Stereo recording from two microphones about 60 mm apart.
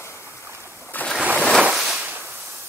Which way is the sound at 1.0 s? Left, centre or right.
Left.